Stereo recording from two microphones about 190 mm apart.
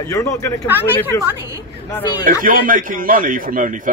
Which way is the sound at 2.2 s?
45° right (ahead or behind).